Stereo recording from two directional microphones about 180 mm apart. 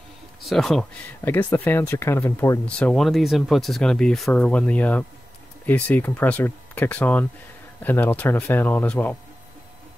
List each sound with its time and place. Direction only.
0.4 s speech: centre (ahead or behind)
1.2 s speech: 10° left (ahead or behind)